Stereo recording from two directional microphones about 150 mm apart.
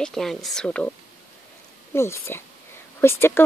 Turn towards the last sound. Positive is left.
turn(degrees=15)  # may be behind; listen again after turning